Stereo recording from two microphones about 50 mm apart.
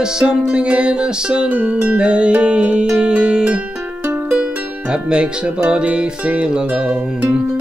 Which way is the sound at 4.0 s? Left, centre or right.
Right.